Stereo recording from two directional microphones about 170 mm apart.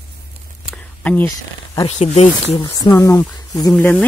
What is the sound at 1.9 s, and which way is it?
Speech, 40° left (ahead or behind).